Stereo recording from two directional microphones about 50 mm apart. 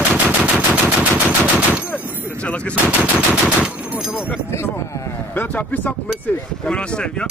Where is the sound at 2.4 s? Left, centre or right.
Left.